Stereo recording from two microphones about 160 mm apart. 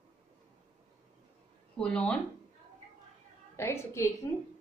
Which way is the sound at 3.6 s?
15° left (ahead or behind).